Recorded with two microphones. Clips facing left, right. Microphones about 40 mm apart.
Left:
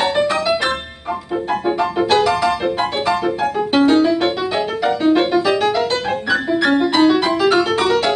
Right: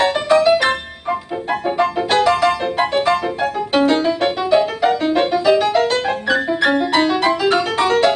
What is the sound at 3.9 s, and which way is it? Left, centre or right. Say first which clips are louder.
Music: left 3 dB; right.